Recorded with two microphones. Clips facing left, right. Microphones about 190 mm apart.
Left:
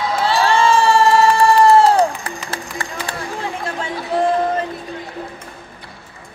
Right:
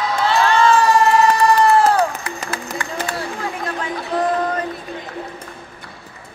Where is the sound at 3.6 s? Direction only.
25° left (ahead or behind).